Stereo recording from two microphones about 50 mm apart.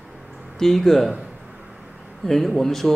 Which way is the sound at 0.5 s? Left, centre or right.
Centre.